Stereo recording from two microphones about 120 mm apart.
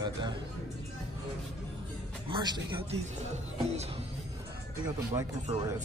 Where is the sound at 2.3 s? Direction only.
40° right (ahead or behind).